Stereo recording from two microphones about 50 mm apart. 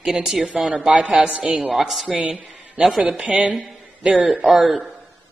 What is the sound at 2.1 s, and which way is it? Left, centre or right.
A woman's voice, right.